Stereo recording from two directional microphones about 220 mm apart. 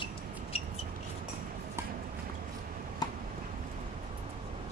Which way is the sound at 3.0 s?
20° left (ahead or behind).